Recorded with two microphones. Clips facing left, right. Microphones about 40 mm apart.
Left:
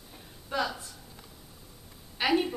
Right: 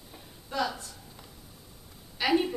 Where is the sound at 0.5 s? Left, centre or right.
Centre.